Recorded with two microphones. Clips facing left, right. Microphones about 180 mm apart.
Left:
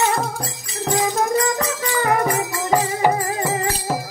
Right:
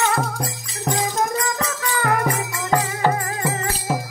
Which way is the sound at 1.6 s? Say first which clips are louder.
Left 2 dB; 20° left (ahead or behind).